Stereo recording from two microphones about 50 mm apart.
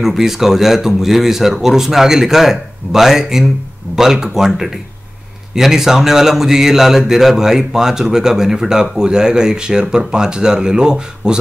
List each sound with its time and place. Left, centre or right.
0.0 s speech: centre
5.5 s speech: centre